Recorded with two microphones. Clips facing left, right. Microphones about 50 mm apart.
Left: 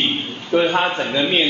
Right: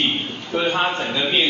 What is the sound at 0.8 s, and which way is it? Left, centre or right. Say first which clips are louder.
Speech: left 2 dB; centre.